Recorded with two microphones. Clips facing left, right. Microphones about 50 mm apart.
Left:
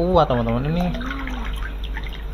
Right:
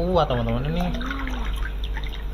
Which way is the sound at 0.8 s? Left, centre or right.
Left.